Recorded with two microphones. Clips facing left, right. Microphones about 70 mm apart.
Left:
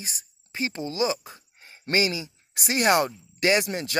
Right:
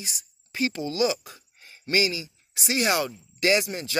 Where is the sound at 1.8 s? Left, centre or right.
Left.